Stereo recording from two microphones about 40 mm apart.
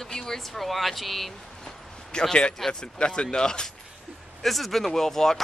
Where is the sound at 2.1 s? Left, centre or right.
Centre.